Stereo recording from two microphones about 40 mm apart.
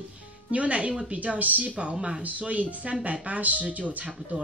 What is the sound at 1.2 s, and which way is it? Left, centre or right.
Speech, right.